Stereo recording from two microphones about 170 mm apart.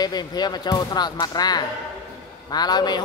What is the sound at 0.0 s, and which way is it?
Speech, 25° left (ahead or behind).